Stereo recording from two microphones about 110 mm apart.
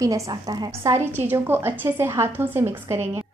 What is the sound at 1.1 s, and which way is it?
A woman's voice, 20° right (ahead or behind).